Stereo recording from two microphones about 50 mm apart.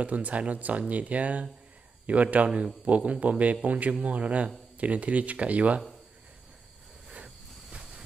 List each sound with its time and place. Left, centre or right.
0.0 s speech: right